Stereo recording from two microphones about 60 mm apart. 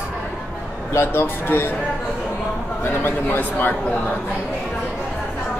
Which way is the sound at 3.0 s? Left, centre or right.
Left.